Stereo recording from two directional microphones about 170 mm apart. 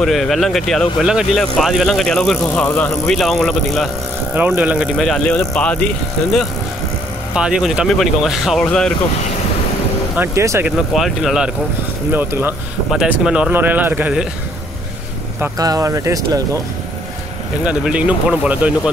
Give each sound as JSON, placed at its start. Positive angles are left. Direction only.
{"t": 0.0, "sound": "speech", "side_deg": 0}
{"t": 4.4, "sound": "speech", "side_deg": -10}
{"t": 4.9, "sound": "speech", "side_deg": 0}
{"t": 7.3, "sound": "speech", "side_deg": -5}
{"t": 10.1, "sound": "speech", "side_deg": -15}
{"t": 11.0, "sound": "speech", "side_deg": 0}
{"t": 15.5, "sound": "speech", "side_deg": -20}
{"t": 17.6, "sound": "speech", "side_deg": -5}